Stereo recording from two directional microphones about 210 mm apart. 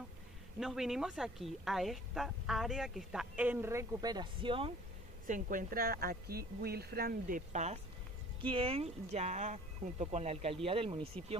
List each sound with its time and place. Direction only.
0.6 s speech: centre (ahead or behind); by 4.7 s 25° right (ahead or behind)
5.2 s a woman's voice: 40° right (ahead or behind)